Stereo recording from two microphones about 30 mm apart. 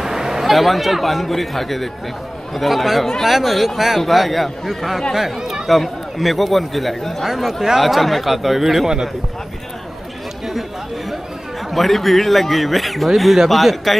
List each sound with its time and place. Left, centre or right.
0.0 s a sound: centre
0.5 s speech: centre
7.2 s speech: centre
11.7 s speech: centre